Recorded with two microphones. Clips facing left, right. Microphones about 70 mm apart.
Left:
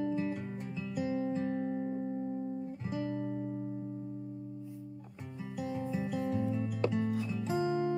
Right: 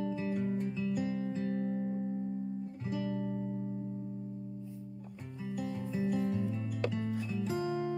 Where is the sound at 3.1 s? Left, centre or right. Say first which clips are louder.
Even; centre.